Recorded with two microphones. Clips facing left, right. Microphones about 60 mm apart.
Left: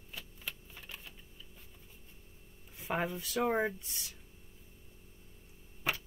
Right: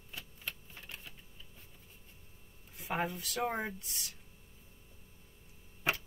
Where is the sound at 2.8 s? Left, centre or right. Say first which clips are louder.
Left 1 dB; centre.